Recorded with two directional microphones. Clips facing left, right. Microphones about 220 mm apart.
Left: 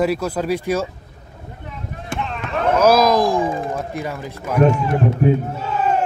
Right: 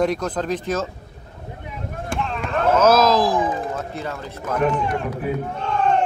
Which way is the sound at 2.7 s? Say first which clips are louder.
Left 2 dB; 10° left (ahead or behind).